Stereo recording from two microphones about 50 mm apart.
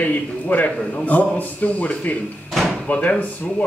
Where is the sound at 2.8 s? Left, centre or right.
Left.